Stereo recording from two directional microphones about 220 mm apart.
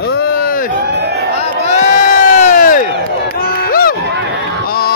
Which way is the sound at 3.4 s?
40° left (ahead or behind).